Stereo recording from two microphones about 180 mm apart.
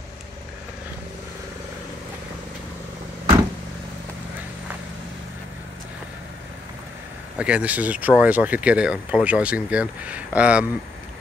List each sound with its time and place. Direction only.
7.3 s speech: 5° right (ahead or behind)